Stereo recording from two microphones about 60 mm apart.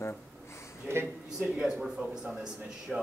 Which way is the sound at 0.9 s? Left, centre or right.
Right.